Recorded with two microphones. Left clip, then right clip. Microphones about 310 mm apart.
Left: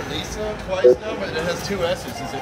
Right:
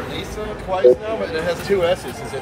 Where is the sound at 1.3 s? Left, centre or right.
Right.